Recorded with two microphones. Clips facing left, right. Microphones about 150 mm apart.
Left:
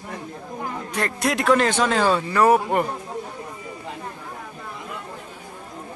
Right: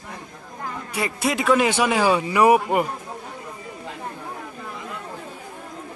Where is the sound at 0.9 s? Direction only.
10° right (ahead or behind).